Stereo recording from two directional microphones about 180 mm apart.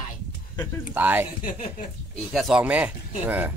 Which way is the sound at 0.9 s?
10° right (ahead or behind).